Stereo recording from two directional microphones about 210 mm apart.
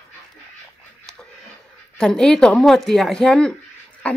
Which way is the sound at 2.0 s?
5° left (ahead or behind).